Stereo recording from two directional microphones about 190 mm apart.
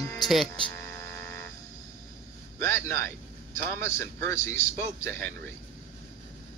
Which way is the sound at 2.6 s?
15° left (ahead or behind).